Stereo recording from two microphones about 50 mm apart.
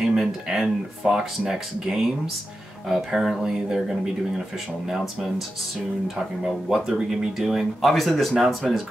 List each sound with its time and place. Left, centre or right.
0.0 s speech: centre
6.1 s speech: centre